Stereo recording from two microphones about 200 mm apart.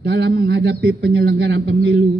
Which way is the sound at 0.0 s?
55° right (ahead or behind).